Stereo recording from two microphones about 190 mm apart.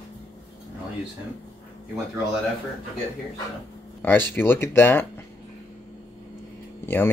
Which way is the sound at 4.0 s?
10° left (ahead or behind).